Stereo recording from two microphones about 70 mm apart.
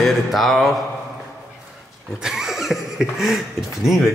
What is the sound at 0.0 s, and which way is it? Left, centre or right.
Speech, centre.